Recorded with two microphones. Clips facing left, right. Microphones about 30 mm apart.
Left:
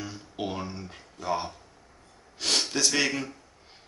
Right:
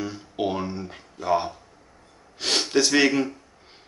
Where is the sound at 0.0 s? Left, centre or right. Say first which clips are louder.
Right 7 dB; centre.